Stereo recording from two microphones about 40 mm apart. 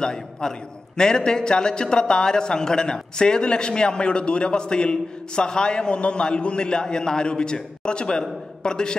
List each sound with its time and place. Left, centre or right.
0.0 s a man's voice: centre